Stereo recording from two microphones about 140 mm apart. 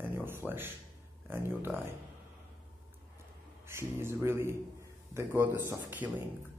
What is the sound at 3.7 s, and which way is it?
A man's voice, 20° right (ahead or behind).